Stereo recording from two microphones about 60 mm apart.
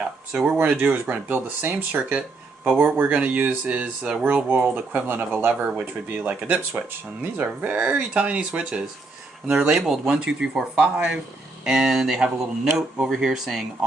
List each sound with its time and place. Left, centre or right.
0.5 s speech: right; by 13.7 s centre